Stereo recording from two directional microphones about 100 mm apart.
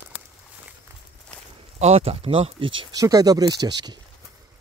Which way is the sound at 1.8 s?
90° right.